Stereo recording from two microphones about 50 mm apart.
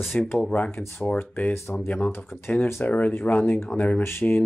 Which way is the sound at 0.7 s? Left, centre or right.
Left.